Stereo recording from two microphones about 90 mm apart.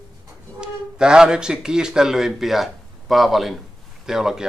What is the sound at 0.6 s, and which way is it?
Speech, 10° right (ahead or behind).